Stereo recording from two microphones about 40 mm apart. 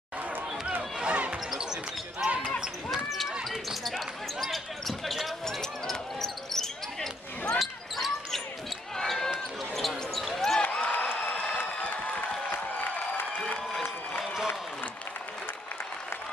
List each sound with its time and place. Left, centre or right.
0.9 s basketball bounce: right
1.3 s basketball bounce: centre
3.4 s basketball bounce: centre
7.5 s basketball bounce: centre
10.6 s a sound: left
13.7 s run: centre